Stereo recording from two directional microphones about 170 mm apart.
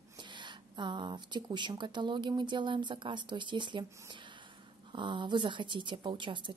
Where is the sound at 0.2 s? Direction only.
25° right (ahead or behind).